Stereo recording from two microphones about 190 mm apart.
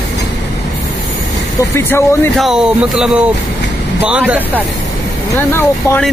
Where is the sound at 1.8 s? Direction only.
10° left (ahead or behind).